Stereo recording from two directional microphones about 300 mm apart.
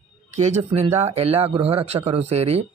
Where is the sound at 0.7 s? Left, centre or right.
Right.